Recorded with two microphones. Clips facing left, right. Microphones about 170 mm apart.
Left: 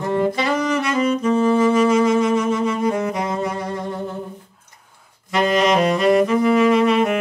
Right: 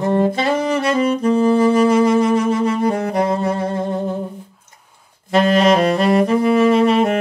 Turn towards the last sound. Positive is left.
turn(degrees=-30)  # may be behind; listen again after turning